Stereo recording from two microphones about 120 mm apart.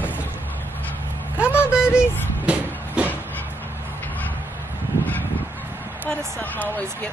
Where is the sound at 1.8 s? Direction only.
20° left (ahead or behind).